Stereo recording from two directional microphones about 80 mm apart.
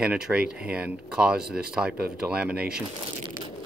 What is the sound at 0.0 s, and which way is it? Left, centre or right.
Speech, centre.